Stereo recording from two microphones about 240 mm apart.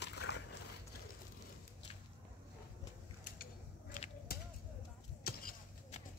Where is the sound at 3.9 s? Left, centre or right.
Left.